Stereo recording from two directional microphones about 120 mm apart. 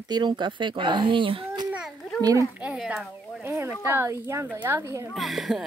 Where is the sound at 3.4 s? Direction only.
20° right (ahead or behind).